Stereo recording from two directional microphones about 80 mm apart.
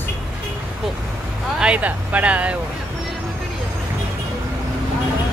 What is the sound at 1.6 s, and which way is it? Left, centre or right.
Speech, centre.